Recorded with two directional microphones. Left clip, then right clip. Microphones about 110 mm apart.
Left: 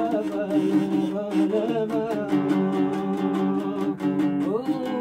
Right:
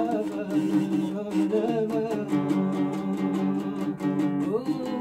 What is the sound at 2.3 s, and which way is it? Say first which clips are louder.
Music: left 3 dB; 15° left (ahead or behind).